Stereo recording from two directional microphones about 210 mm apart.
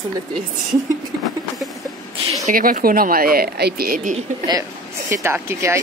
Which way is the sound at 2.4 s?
40° right (ahead or behind).